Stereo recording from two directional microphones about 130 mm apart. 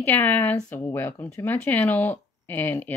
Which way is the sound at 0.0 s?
15° left (ahead or behind).